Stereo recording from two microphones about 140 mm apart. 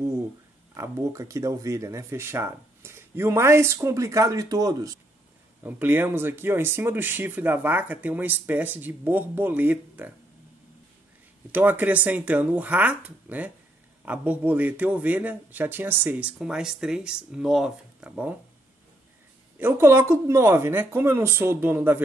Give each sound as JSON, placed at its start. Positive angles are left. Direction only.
{"t": 0.7, "sound": "speech", "side_deg": -20}
{"t": 5.6, "sound": "speech", "side_deg": -15}
{"t": 11.5, "sound": "speech", "side_deg": -15}
{"t": 19.6, "sound": "speech", "side_deg": -20}